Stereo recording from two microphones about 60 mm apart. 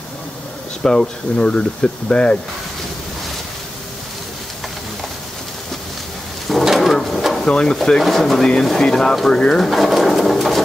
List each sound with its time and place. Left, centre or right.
0.8 s speech: centre
6.5 s bird: centre
7.4 s speech: centre
9.7 s bird: centre